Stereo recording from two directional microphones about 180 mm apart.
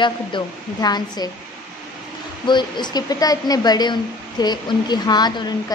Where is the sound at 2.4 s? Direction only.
25° left (ahead or behind).